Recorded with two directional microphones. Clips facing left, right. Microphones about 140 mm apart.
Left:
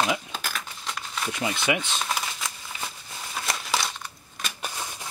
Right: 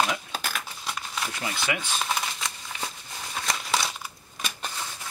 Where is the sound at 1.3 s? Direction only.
20° left (ahead or behind).